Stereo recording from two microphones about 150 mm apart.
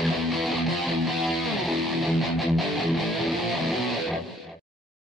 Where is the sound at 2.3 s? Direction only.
Centre (ahead or behind).